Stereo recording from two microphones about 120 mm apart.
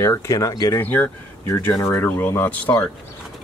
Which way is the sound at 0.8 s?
15° left (ahead or behind).